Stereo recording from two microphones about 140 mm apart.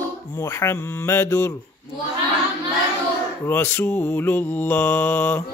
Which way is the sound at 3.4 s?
15° left (ahead or behind).